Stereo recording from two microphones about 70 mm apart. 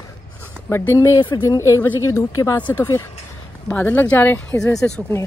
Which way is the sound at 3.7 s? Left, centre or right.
Left.